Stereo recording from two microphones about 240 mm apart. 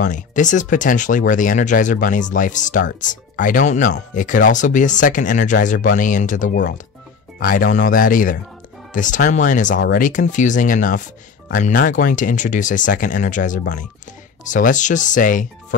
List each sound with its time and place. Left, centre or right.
0.0 s speech: left